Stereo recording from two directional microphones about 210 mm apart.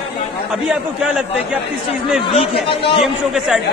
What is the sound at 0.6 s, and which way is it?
Speech, 5° right (ahead or behind).